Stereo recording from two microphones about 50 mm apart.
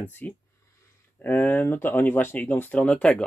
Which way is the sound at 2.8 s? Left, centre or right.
Left.